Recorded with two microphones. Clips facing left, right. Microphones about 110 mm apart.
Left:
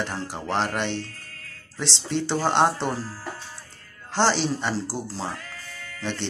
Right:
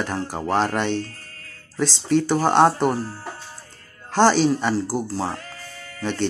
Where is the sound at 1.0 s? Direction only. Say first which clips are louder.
Right 3 dB; 40° right (ahead or behind).